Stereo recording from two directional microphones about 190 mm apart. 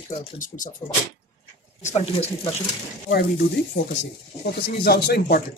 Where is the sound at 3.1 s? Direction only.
50° left (ahead or behind).